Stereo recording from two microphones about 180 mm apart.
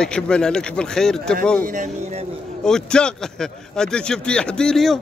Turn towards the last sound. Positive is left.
turn(degrees=5)  # may be behind; listen again after turning